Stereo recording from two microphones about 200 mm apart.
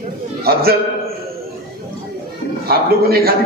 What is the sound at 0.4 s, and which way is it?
Speech, 50° right (ahead or behind).